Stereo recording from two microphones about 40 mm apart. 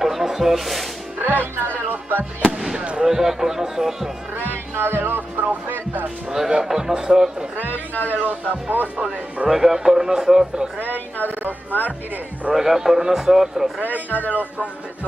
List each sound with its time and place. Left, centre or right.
0.0 s a sound: centre
1.2 s speech: right
1.9 s music: right
3.0 s a man's voice: centre
4.7 s music: right
5.4 s speech: right
6.6 s a man's voice: centre
7.7 s a man's voice: left
8.2 s speech: right
9.5 s a man's voice: centre
10.8 s speech: right
12.5 s a man's voice: centre
14.1 s a man's voice: left